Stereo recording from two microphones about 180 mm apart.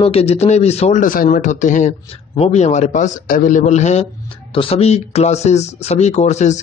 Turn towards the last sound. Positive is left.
turn(degrees=40)  # may be behind; listen again after turning